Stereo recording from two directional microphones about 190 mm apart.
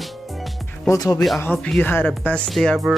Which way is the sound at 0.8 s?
15° left (ahead or behind).